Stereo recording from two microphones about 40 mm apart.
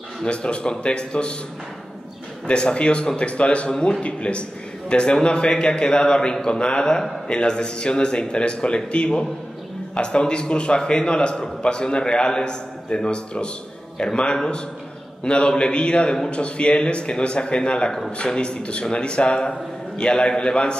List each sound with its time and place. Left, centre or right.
0.2 s a man's voice: left
2.4 s a man's voice: left